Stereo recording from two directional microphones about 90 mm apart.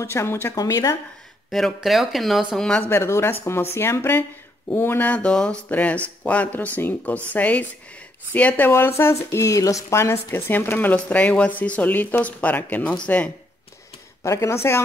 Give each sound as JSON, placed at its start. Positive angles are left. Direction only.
{"t": 0.0, "sound": "speech", "side_deg": 30}
{"t": 1.5, "sound": "speech", "side_deg": 0}
{"t": 2.9, "sound": "speech", "side_deg": 30}
{"t": 14.2, "sound": "speech", "side_deg": 35}